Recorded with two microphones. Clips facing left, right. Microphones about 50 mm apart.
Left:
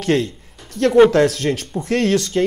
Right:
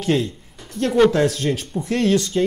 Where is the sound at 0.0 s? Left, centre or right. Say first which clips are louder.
Left 2 dB; left.